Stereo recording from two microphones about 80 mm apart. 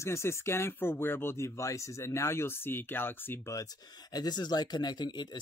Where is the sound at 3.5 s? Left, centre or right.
Left.